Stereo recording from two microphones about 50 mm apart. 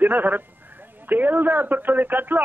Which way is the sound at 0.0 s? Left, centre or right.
Right.